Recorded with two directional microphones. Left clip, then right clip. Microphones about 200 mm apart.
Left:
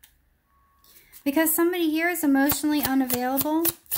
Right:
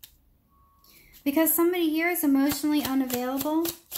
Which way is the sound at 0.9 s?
30° left (ahead or behind).